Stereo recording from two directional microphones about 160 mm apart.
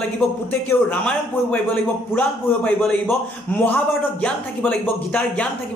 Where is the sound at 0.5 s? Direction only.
10° left (ahead or behind).